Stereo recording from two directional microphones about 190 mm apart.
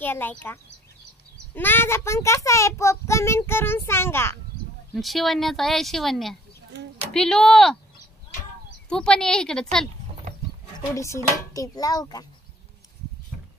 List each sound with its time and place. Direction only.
0.0 s a child's voice: 10° left (ahead or behind)
4.9 s a woman's voice: centre (ahead or behind)
8.8 s a woman's voice: 5° left (ahead or behind)
11.0 s a child's voice: 15° left (ahead or behind)